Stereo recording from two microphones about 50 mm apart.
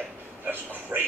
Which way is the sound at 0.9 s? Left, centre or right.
Right.